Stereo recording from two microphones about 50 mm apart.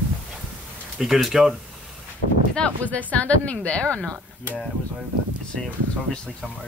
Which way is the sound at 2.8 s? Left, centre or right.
Left.